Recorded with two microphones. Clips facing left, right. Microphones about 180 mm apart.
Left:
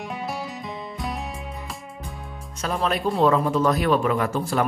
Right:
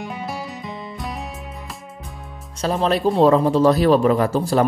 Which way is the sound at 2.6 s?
35° right (ahead or behind).